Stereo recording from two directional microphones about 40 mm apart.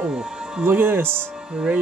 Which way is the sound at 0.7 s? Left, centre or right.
Right.